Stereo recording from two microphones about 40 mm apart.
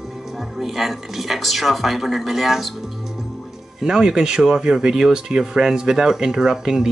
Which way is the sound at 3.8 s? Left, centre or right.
Centre.